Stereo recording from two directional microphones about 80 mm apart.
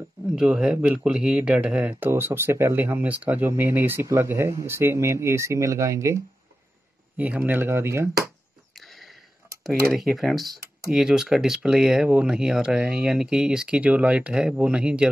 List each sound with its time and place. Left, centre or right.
0.4 s speech: centre; by 6.1 s right
7.2 s speech: right
8.7 s a sound: centre
9.6 s speech: centre